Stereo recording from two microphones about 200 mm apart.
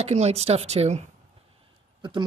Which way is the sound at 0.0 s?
30° right (ahead or behind).